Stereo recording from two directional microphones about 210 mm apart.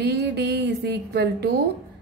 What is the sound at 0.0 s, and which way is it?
A woman's voice, 50° right (ahead or behind).